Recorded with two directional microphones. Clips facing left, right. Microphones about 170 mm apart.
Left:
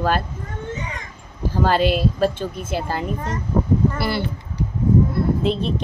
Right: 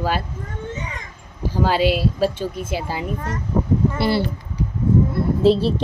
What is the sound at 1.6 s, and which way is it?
Speech, 10° right (ahead or behind).